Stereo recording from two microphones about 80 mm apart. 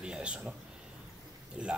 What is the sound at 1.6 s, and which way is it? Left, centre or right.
Speech, centre.